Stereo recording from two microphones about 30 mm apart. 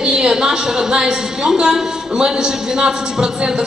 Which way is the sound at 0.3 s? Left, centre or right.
Centre.